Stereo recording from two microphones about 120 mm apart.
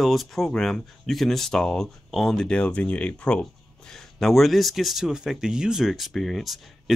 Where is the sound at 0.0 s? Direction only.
Centre (ahead or behind).